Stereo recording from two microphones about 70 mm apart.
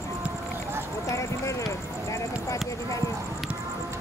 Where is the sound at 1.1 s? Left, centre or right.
Left.